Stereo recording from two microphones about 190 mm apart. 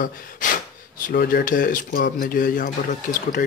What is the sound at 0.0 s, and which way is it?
Speech, 45° left (ahead or behind).